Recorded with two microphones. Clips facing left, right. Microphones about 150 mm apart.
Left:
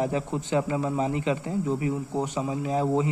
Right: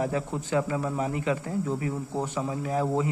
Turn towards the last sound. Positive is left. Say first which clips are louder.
# left 2 dB
turn(degrees=20)  # may be behind; listen again after turning